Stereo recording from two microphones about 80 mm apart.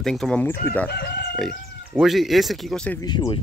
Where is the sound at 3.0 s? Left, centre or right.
Left.